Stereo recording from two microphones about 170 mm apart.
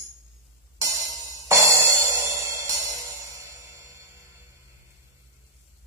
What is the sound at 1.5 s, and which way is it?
Music, 15° right (ahead or behind).